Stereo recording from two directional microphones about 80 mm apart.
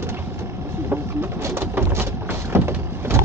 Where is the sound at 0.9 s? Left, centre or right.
Right.